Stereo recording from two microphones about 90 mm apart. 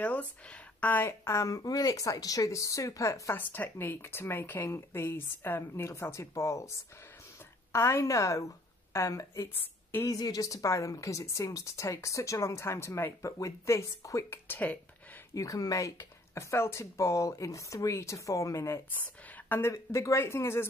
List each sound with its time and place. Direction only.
0.0 s speech: 15° left (ahead or behind); by 6.7 s 35° left (ahead or behind)
7.7 s a woman's voice: 35° left (ahead or behind)
14.5 s speech: 15° left (ahead or behind)
15.3 s speech: 40° left (ahead or behind)
19.2 s a sound: 20° left (ahead or behind)
19.7 s speech: 35° left (ahead or behind)